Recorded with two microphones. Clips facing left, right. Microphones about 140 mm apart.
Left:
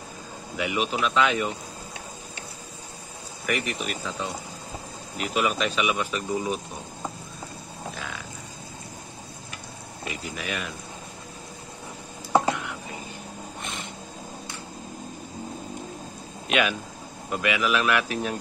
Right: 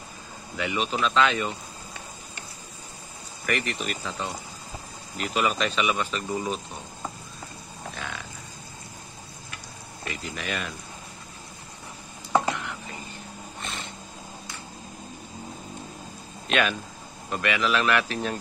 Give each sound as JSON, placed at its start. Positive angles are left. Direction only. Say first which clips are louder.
{"t": 0.6, "sound": "speech", "louder": "left 1 dB", "side_deg": 10}
{"t": 3.4, "sound": "speech", "louder": "even", "side_deg": 5}
{"t": 7.9, "sound": "a sound", "louder": "right 2 dB", "side_deg": 0}
{"t": 10.0, "sound": "speech", "louder": "even", "side_deg": 5}
{"t": 12.3, "sound": "whispering", "louder": "left 2 dB", "side_deg": 10}
{"t": 13.6, "sound": "a sound", "louder": "right 1 dB", "side_deg": 15}
{"t": 16.4, "sound": "speech", "louder": "even", "side_deg": 10}